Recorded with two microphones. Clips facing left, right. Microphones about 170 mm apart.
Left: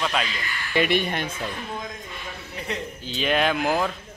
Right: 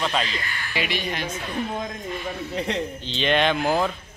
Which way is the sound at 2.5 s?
75° right (ahead or behind).